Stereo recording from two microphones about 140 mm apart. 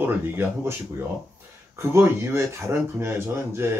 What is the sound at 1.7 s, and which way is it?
Speech, 20° right (ahead or behind).